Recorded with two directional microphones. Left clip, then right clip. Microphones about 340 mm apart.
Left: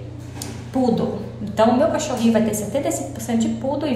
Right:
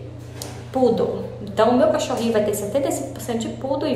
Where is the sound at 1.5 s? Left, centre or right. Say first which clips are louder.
Even; centre.